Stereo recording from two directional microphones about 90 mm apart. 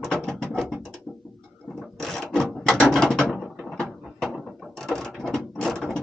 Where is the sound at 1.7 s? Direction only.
5° left (ahead or behind).